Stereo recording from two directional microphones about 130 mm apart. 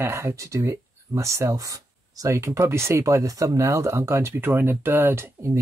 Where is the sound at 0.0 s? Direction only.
20° right (ahead or behind).